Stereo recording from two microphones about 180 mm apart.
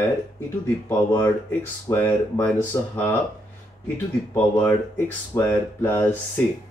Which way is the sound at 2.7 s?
20° left (ahead or behind).